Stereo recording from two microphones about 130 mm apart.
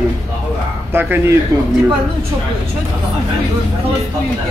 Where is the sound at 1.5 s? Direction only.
25° right (ahead or behind).